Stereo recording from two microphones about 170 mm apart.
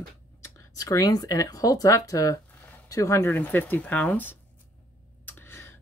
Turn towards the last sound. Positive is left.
turn(degrees=15)  # may be behind; listen again after turning